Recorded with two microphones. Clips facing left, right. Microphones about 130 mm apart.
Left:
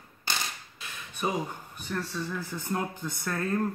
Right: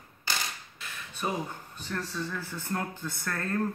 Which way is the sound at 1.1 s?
15° left (ahead or behind).